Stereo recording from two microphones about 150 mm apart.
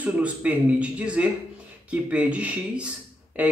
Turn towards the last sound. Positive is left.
turn(degrees=-10)  # may be behind; listen again after turning